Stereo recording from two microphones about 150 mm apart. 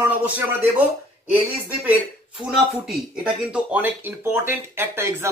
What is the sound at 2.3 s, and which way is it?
Speech, centre (ahead or behind).